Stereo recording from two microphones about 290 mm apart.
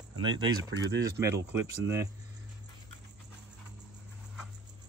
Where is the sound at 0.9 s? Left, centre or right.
Centre.